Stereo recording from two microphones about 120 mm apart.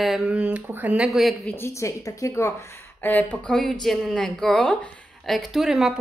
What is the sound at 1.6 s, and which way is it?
A woman's voice, 25° left (ahead or behind).